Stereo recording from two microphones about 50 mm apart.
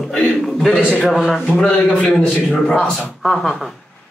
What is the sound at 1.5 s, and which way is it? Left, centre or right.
Speech, left.